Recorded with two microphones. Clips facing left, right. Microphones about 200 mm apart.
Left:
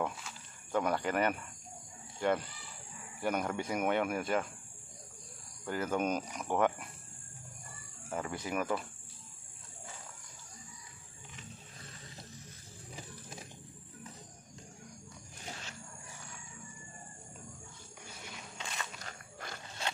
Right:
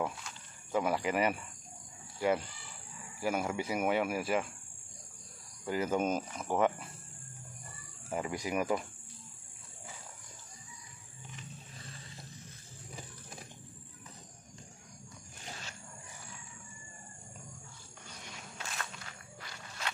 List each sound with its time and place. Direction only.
0.0 s speech: 5° right (ahead or behind)
5.7 s speech: 10° right (ahead or behind)
8.1 s speech: 10° right (ahead or behind)
18.9 s walk: 45° left (ahead or behind)